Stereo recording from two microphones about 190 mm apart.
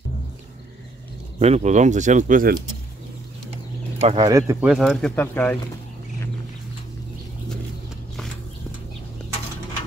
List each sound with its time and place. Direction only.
1.4 s speech: 35° right (ahead or behind)
4.0 s speech: 30° right (ahead or behind)
4.3 s speech: 15° right (ahead or behind)
4.6 s speech: 5° right (ahead or behind)